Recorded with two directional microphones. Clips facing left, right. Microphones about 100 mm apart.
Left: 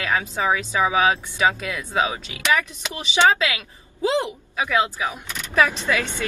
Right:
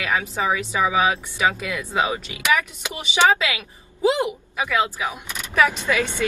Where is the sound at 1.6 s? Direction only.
15° right (ahead or behind).